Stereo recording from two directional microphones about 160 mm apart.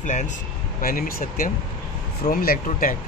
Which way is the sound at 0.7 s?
60° left (ahead or behind).